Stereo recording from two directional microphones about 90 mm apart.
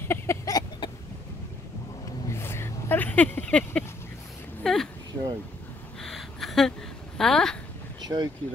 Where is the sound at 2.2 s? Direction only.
30° left (ahead or behind).